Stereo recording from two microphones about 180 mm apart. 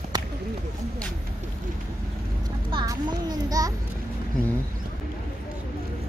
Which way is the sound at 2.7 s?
25° right (ahead or behind).